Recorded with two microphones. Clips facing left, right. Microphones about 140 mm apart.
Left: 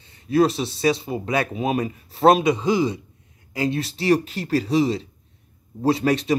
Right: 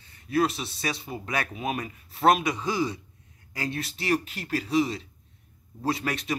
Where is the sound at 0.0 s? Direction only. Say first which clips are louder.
Left 7 dB; 25° left (ahead or behind).